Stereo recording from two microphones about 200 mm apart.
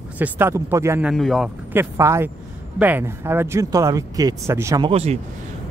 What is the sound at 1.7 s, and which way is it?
Speech, 15° right (ahead or behind).